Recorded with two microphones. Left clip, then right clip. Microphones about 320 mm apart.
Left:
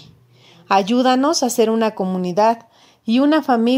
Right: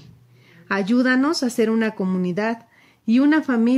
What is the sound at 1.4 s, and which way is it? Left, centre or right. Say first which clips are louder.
A woman's voice: left 5 dB; left.